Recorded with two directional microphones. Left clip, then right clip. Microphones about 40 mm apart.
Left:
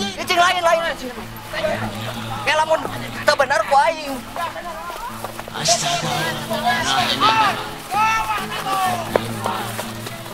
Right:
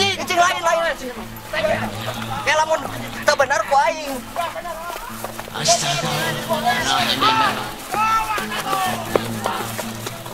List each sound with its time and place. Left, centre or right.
0.0 s a sound: centre
1.5 s music: centre
2.4 s a man's voice: centre
3.3 s a sound: centre
5.6 s speech: right
6.5 s speech: centre
6.8 s speech: right
8.0 s music: centre
8.5 s music: centre
9.4 s music: centre